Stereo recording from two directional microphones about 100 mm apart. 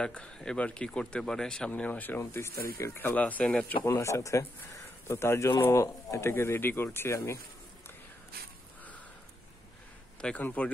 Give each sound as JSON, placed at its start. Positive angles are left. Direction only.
{"t": 0.0, "sound": "speech", "side_deg": 10}
{"t": 1.7, "sound": "speech", "side_deg": 15}
{"t": 3.8, "sound": "speech", "side_deg": 30}
{"t": 10.2, "sound": "speech", "side_deg": 15}